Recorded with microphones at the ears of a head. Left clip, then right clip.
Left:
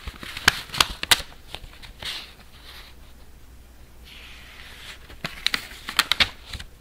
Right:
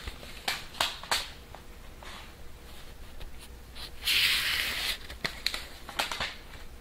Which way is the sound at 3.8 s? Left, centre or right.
Right.